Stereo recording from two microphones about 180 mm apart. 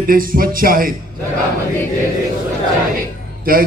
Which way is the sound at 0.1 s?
50° right (ahead or behind).